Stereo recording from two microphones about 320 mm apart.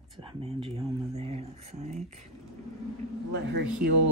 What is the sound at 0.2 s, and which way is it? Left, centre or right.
Speech, centre.